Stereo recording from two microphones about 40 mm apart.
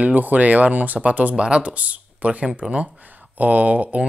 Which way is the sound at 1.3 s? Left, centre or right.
Right.